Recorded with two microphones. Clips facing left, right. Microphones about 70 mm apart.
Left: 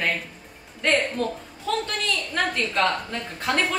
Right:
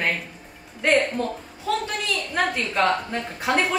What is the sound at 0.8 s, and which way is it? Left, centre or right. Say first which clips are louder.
Speech: right 2 dB; centre.